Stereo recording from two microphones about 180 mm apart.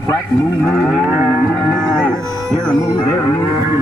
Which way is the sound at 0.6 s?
Centre (ahead or behind).